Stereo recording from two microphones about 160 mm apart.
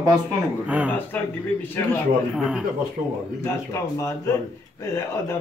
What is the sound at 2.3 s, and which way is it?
Speech, 5° right (ahead or behind).